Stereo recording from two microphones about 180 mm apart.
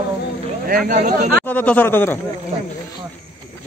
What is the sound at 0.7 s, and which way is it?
Speech, 50° right (ahead or behind).